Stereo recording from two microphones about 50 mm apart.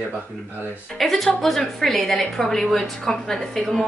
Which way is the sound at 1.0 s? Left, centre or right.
Centre.